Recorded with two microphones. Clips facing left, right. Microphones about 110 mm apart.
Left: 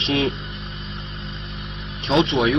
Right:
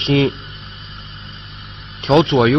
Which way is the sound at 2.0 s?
60° right (ahead or behind).